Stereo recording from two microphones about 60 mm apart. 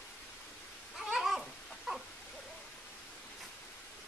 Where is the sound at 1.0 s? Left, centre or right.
Centre.